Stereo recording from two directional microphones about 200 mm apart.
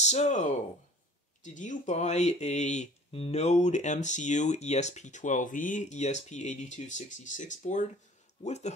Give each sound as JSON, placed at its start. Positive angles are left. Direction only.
{"t": 0.0, "sound": "speech", "side_deg": 35}